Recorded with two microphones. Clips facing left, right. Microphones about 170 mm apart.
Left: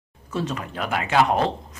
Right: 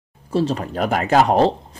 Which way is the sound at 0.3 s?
30° right (ahead or behind).